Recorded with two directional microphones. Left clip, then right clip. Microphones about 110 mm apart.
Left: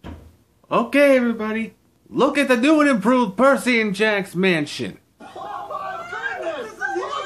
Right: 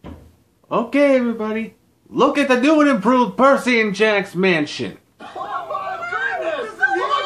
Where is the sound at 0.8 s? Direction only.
25° right (ahead or behind).